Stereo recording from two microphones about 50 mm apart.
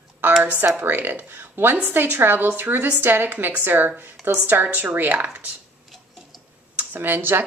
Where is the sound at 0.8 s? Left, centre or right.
Right.